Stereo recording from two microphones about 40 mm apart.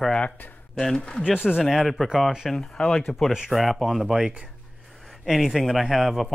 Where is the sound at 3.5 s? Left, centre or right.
Centre.